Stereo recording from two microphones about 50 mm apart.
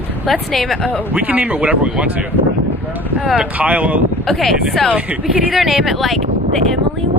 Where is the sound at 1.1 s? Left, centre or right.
Right.